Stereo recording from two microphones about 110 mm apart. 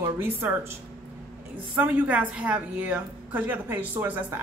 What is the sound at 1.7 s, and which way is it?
A woman's voice, 15° right (ahead or behind).